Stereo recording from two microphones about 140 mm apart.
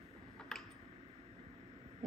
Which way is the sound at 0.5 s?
5° left (ahead or behind).